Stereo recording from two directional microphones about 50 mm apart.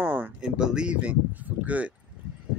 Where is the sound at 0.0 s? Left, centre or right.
Right.